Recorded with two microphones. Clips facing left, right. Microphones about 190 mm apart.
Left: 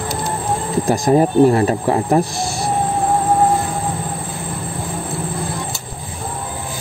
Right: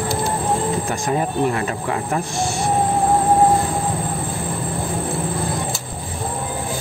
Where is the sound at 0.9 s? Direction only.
35° left (ahead or behind).